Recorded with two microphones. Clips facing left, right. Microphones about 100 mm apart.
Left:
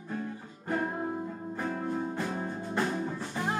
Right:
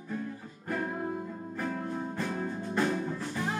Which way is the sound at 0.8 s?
20° left (ahead or behind).